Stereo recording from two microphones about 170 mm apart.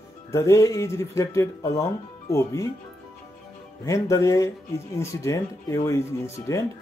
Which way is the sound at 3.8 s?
20° left (ahead or behind).